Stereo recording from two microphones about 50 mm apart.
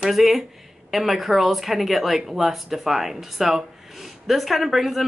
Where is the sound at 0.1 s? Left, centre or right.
Centre.